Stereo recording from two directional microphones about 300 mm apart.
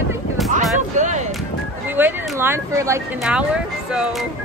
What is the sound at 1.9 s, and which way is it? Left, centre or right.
A woman's voice, centre.